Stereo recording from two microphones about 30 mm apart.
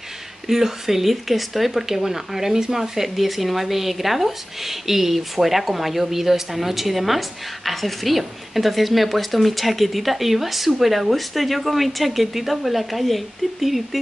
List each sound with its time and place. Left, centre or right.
0.5 s speech: centre